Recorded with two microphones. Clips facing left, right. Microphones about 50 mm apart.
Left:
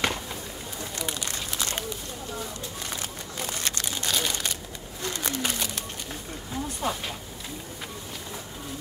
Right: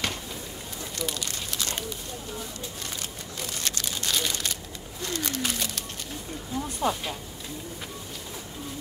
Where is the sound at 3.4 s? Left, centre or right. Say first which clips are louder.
Left 2 dB; left.